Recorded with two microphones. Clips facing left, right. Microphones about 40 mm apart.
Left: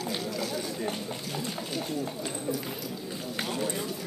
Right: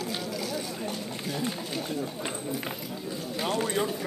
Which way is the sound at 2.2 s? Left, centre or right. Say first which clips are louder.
Even; right.